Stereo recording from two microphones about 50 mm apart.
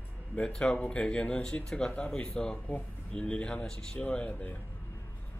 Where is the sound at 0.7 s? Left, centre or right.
Left.